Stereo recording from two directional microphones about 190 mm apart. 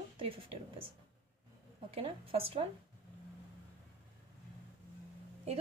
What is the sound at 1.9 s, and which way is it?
Speech, 30° right (ahead or behind).